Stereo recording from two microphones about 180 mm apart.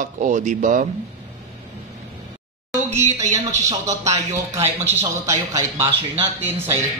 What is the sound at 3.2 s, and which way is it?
Speech, 40° right (ahead or behind).